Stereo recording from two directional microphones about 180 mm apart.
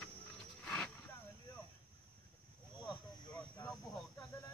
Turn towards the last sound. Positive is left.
turn(degrees=5)  # may be behind; listen again after turning